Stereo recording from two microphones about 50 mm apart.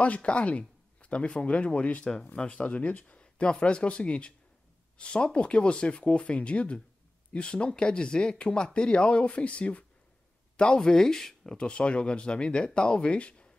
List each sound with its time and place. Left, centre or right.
0.0 s speech: left
10.6 s speech: centre